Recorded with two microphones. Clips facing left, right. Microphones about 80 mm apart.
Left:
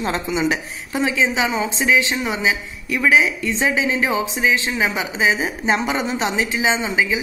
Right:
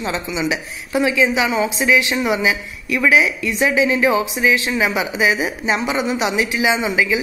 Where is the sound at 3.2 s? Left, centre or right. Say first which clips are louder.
Right 1 dB; left.